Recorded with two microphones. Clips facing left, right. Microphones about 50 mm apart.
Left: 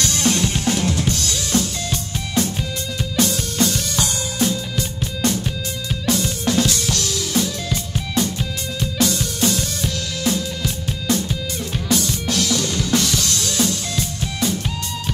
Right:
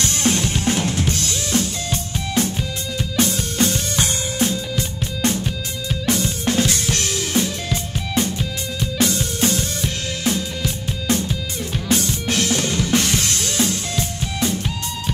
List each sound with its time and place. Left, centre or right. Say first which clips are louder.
0.0 s drum kit: left 1 dB; right
3.2 s music: even; right
11.9 s drum kit: even; right
14.4 s music: even; right